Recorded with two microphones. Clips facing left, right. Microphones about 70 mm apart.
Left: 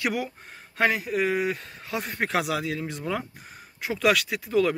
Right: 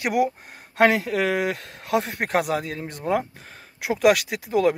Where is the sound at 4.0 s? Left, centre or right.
Right.